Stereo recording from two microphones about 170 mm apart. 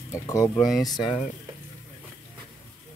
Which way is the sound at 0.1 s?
20° left (ahead or behind).